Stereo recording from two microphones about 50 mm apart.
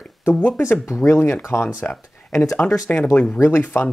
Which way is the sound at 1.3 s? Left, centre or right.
Left.